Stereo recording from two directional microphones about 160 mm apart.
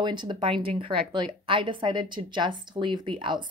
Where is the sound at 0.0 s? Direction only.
30° right (ahead or behind).